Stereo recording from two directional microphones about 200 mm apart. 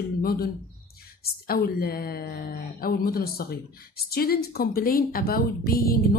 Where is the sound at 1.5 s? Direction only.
50° left (ahead or behind).